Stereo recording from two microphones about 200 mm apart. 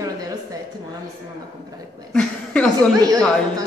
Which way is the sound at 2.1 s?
5° left (ahead or behind).